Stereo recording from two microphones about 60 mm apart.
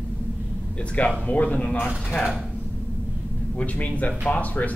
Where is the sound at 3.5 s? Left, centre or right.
Left.